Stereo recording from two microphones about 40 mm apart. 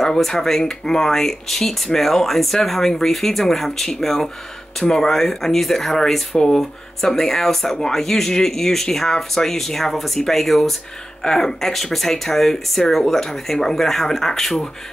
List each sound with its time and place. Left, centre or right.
0.0 s speech: centre